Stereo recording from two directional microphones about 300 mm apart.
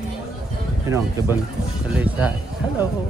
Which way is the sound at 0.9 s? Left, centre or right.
Centre.